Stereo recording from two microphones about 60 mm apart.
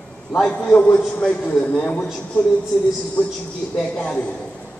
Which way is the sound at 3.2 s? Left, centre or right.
Left.